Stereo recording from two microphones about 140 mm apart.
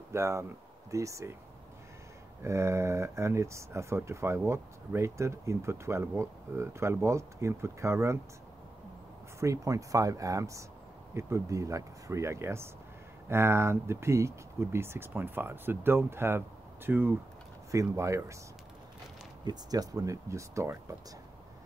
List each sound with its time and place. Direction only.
0.1 s speech: 20° right (ahead or behind)
2.4 s speech: 20° right (ahead or behind)
9.4 s speech: 25° right (ahead or behind)
19.4 s speech: 30° right (ahead or behind)